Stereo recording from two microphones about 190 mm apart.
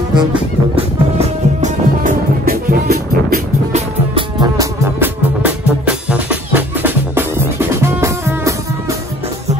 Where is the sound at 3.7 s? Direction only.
30° right (ahead or behind).